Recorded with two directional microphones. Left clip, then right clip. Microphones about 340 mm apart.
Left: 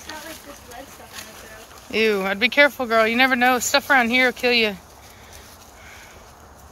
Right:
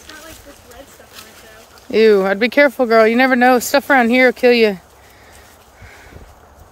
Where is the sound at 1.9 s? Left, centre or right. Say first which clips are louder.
Right 9 dB; centre.